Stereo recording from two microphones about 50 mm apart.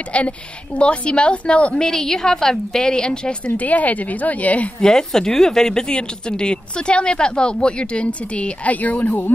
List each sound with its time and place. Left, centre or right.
0.1 s a woman's voice: left
1.9 s a woman's voice: centre
3.5 s speech: left
4.7 s a woman's voice: centre; by 9.3 s left